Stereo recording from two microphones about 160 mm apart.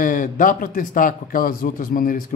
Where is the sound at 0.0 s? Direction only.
55° left (ahead or behind).